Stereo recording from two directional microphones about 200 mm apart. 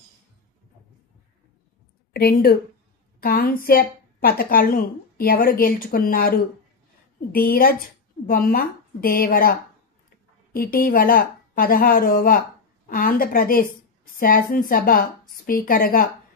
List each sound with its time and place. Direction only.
2.1 s a woman's voice: 50° left (ahead or behind)